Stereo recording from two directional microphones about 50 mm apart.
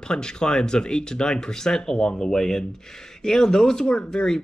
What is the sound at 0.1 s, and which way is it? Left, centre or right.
Speech, centre.